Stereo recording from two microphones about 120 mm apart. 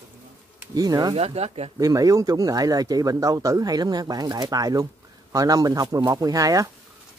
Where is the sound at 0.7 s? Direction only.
30° right (ahead or behind).